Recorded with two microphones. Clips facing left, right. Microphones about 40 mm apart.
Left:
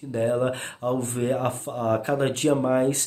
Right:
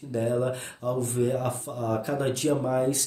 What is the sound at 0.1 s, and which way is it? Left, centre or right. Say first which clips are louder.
Speech: left 3 dB; left.